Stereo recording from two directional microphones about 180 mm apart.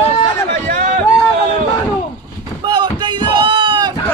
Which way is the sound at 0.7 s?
50° right (ahead or behind).